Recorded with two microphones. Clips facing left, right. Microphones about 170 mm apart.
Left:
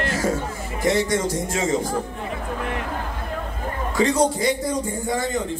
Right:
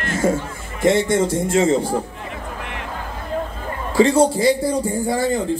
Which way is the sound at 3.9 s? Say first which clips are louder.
Right 5 dB; 30° right (ahead or behind).